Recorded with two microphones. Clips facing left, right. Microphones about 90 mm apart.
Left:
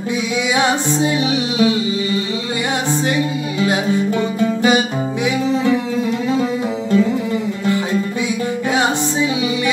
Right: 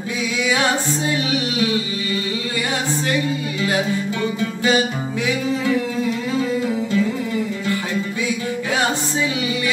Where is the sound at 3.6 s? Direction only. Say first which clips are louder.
Left 5 dB; 20° left (ahead or behind).